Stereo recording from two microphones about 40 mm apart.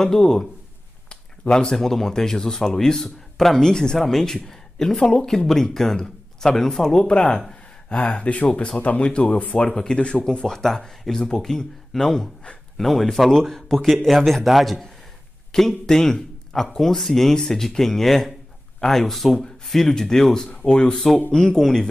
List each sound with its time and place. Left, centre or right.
0.0 s speech: centre
1.0 s a sound: left
1.7 s speech: centre
8.2 s speech: left
9.3 s speech: left
9.7 s speech: centre